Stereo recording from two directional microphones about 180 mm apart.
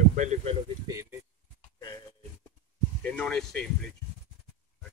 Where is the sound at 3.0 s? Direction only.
5° left (ahead or behind).